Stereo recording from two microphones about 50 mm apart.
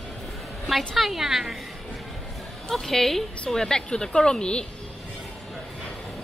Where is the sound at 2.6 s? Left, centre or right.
Centre.